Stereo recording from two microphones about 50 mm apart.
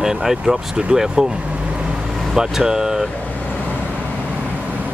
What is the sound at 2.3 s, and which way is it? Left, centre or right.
Speech, centre.